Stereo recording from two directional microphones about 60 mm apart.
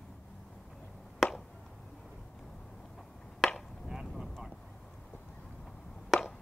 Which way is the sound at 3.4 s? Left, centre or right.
Centre.